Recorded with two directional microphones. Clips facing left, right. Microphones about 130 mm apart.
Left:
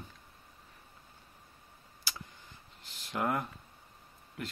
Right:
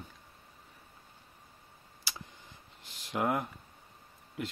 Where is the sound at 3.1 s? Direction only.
15° right (ahead or behind).